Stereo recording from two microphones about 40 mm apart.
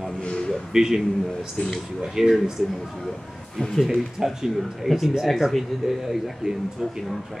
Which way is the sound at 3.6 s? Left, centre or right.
Centre.